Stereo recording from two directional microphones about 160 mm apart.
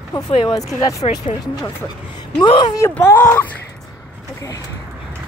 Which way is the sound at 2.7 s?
15° left (ahead or behind).